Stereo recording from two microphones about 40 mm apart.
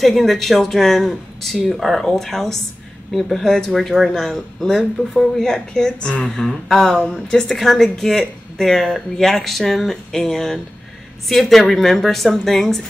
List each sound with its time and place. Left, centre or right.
0.0 s speech: centre
3.7 s speech: centre; by 6.2 s left
6.2 s speech: centre
7.0 s speech: centre
7.4 s speech: centre